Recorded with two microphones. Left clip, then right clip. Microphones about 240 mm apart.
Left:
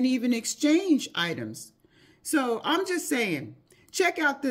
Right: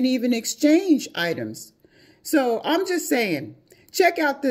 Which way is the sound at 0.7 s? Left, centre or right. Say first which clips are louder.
Right 5 dB; centre.